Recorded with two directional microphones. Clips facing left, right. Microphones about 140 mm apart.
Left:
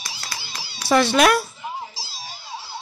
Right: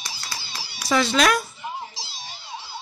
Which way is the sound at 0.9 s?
60° left (ahead or behind).